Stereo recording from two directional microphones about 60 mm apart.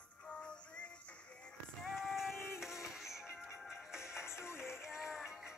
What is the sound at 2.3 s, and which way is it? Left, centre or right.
Music, left.